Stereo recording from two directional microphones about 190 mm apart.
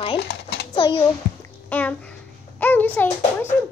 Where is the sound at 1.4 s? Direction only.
10° left (ahead or behind).